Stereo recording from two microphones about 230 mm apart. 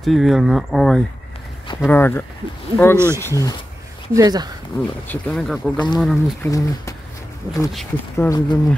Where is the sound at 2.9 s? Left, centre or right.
Centre.